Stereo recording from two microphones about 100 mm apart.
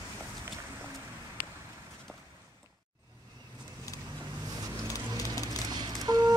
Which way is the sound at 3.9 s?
35° left (ahead or behind).